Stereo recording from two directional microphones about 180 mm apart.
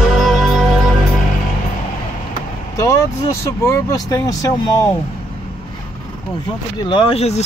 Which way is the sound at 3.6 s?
20° left (ahead or behind).